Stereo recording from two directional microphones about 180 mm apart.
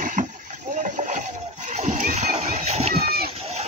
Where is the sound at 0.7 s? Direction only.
45° right (ahead or behind).